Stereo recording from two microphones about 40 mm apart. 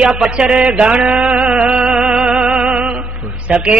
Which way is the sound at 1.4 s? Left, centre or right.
Right.